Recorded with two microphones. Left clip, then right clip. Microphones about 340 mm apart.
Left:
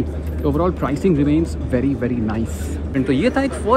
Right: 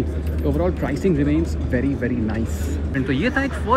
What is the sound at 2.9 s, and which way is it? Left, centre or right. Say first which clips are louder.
Speech: left 4 dB; centre.